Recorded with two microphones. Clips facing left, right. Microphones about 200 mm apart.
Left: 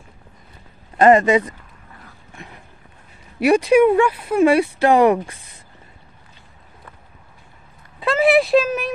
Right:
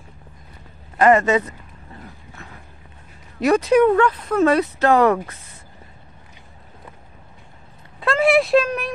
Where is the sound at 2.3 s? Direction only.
15° left (ahead or behind).